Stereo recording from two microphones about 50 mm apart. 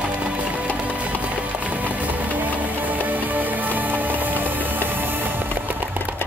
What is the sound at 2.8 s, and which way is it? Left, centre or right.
Music, right.